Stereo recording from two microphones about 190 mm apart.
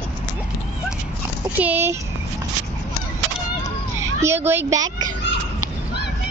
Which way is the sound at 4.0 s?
15° right (ahead or behind).